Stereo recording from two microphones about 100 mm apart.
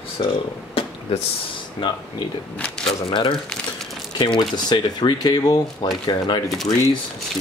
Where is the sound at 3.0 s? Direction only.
50° left (ahead or behind).